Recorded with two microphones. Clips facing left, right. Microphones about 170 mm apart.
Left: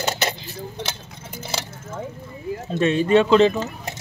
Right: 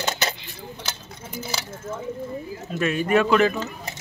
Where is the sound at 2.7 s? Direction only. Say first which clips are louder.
Left 4 dB; 30° left (ahead or behind).